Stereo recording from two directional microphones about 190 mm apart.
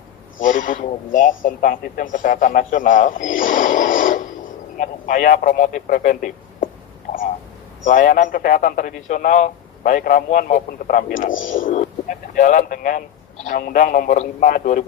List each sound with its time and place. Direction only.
0.4 s a man's voice: 45° left (ahead or behind)